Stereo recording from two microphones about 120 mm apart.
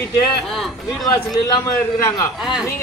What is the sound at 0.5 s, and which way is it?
Speech, centre (ahead or behind).